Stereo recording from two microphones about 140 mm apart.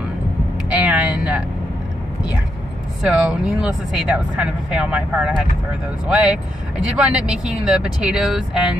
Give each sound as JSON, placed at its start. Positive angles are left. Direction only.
{"t": 0.7, "sound": "vehicle", "side_deg": -10}
{"t": 3.0, "sound": "speech", "side_deg": -5}